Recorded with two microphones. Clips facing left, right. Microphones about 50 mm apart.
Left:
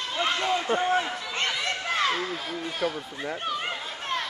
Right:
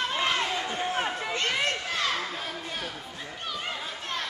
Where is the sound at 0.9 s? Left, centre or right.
Right.